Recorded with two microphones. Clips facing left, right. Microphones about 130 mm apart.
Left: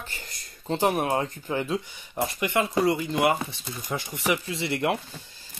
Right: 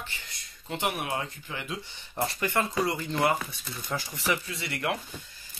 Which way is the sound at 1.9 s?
15° left (ahead or behind).